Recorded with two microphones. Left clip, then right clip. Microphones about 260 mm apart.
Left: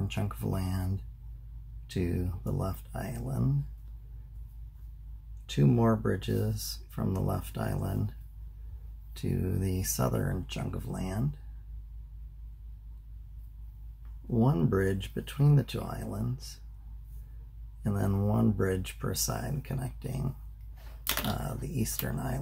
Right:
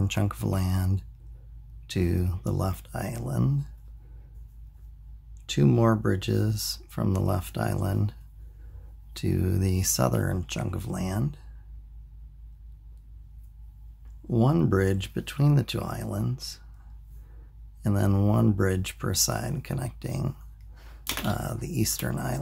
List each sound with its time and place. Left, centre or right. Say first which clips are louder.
0.1 s speech: right 6 dB; right
5.5 s speech: right 4 dB; right
14.3 s speech: right 4 dB; right
17.8 s speech: right 6 dB; right
21.3 s speech: right 4 dB; right